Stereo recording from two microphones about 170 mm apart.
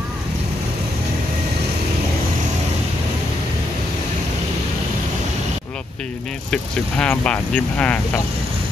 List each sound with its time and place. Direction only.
6.5 s speech: 5° left (ahead or behind)